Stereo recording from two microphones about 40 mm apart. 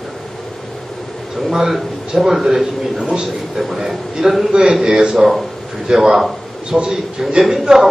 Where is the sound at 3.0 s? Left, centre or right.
Right.